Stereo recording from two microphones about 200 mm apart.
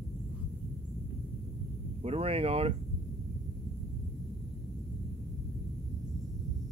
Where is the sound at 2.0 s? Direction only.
30° right (ahead or behind).